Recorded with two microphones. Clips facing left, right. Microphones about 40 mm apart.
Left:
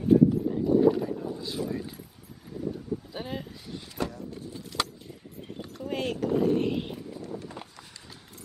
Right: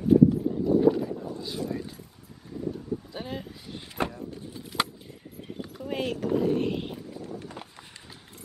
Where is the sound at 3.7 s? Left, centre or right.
Right.